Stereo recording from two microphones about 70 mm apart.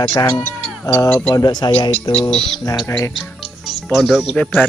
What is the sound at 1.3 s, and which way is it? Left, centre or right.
Speech, left.